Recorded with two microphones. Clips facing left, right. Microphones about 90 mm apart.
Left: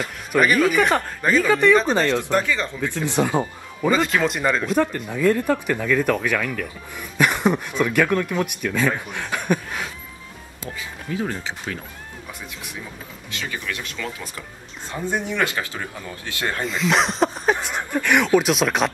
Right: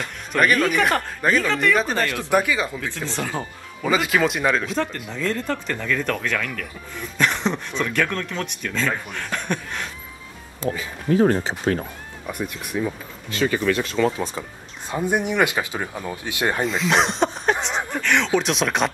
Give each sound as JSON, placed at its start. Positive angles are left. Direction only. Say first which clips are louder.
{"t": 0.0, "sound": "speech", "louder": "left 1 dB", "side_deg": 0}
{"t": 2.9, "sound": "speech", "louder": "left 6 dB", "side_deg": 15}
{"t": 3.9, "sound": "speech", "louder": "right 1 dB", "side_deg": -5}
{"t": 5.1, "sound": "speech", "louder": "left 7 dB", "side_deg": 10}
{"t": 10.6, "sound": "speech", "louder": "right 8 dB", "side_deg": -45}
{"t": 12.3, "sound": "speech", "louder": "right 11 dB", "side_deg": -55}
{"t": 13.3, "sound": "speech", "louder": "right 9 dB", "side_deg": -40}
{"t": 14.9, "sound": "speech", "louder": "right 3 dB", "side_deg": -15}
{"t": 16.6, "sound": "speech", "louder": "left 2 dB", "side_deg": 0}